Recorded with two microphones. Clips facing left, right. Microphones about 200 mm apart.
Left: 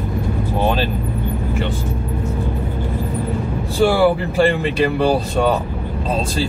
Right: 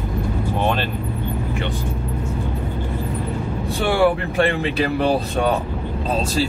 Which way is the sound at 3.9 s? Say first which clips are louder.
Left 2 dB; centre (ahead or behind).